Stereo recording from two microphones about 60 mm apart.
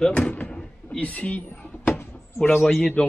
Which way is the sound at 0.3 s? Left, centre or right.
Centre.